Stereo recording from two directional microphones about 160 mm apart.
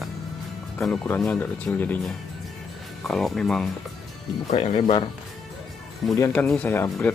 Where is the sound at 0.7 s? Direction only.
5° left (ahead or behind).